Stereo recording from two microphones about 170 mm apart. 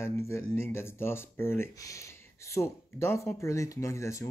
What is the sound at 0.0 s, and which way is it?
Speech, 15° left (ahead or behind).